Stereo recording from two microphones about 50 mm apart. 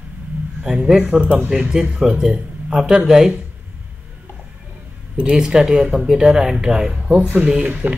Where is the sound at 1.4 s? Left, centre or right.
Centre.